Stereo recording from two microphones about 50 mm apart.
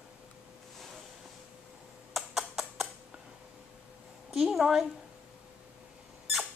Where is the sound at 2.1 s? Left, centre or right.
Centre.